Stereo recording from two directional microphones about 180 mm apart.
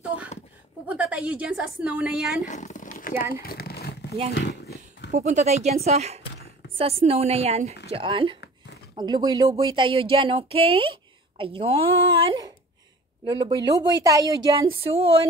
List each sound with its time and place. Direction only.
0.8 s a woman's voice: 5° right (ahead or behind)
2.4 s a sound: 45° left (ahead or behind); by 3.9 s 60° left (ahead or behind)
4.3 s dog: 70° left (ahead or behind)
5.1 s speech: 40° right (ahead or behind)